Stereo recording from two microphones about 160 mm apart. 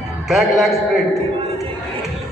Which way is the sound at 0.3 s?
Centre (ahead or behind).